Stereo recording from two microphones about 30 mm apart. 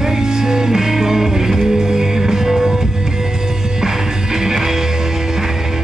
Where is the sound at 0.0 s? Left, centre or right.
Centre.